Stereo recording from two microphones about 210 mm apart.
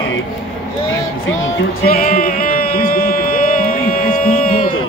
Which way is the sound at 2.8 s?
45° left (ahead or behind).